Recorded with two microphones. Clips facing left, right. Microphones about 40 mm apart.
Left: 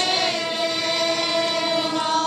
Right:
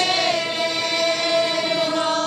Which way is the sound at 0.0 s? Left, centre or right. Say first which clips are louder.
Right 2 dB; centre.